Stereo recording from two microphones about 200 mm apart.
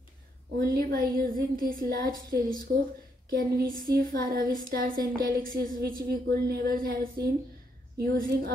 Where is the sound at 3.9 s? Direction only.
45° right (ahead or behind).